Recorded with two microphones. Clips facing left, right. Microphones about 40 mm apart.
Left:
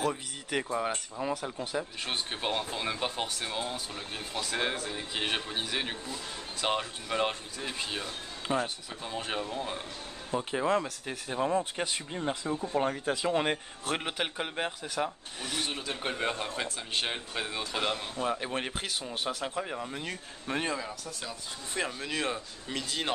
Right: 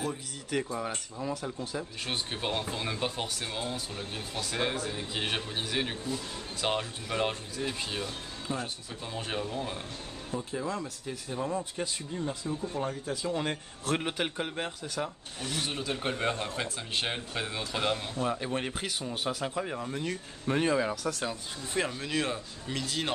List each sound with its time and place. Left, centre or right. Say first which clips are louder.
0.1 s speech: even; left
1.8 s a man's voice: left 2 dB; centre
8.4 s speech: left 5 dB; left
9.0 s speech: even; centre
10.3 s speech: left 6 dB; left
11.8 s speech: left 1 dB; left
13.8 s a man's voice: right 2 dB; centre
21.7 s a man's voice: right 2 dB; centre